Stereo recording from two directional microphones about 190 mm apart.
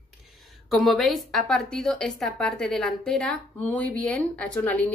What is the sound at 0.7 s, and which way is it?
A woman's voice, centre (ahead or behind).